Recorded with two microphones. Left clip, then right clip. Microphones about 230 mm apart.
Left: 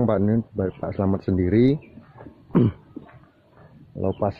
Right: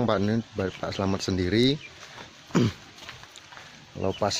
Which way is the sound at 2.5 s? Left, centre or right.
Centre.